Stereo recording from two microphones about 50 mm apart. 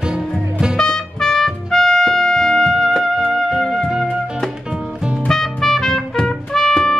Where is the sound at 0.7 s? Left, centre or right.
Centre.